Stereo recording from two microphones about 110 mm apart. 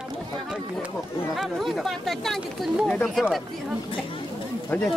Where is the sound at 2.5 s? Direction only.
Centre (ahead or behind).